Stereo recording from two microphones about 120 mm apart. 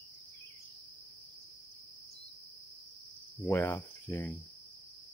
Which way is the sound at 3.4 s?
20° left (ahead or behind).